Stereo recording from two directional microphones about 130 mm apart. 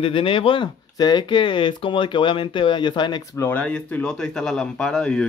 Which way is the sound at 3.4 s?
10° left (ahead or behind).